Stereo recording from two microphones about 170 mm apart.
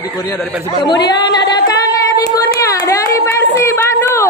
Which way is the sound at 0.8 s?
25° left (ahead or behind).